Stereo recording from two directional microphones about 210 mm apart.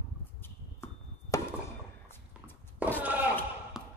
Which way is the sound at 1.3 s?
15° left (ahead or behind).